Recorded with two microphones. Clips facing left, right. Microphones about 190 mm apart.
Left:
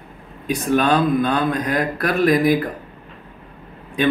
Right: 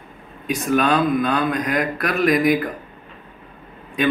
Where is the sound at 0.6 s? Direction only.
30° left (ahead or behind).